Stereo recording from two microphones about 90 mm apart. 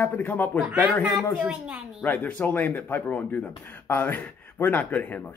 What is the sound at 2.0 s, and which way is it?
A man's voice, 20° left (ahead or behind).